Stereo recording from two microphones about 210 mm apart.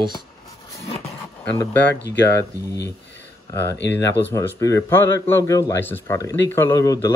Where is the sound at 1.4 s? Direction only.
10° left (ahead or behind).